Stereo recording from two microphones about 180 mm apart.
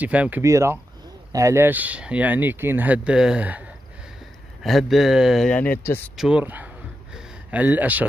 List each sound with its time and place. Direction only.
0.0 s speech: 10° right (ahead or behind)
4.6 s speech: centre (ahead or behind)
6.1 s speech: 5° right (ahead or behind)
7.2 s a sound: 10° right (ahead or behind)